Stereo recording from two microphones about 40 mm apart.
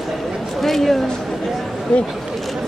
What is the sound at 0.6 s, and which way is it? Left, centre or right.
Speech, centre.